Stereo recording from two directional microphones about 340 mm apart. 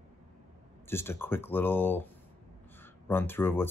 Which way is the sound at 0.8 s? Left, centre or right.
Centre.